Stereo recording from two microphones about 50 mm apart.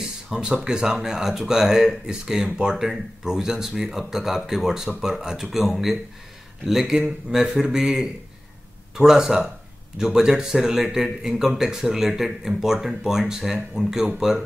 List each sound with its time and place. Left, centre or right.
0.3 s speech: centre